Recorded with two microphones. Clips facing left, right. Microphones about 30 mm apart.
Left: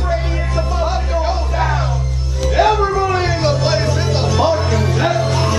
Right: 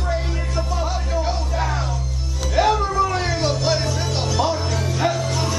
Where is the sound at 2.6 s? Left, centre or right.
Left.